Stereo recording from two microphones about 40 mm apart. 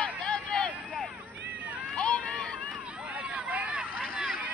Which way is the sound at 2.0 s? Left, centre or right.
Left.